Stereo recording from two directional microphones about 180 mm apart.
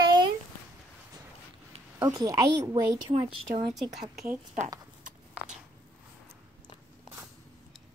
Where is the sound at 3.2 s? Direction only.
40° right (ahead or behind).